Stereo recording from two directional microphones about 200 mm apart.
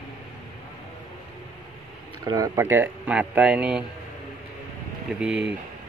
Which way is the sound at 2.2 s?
15° right (ahead or behind).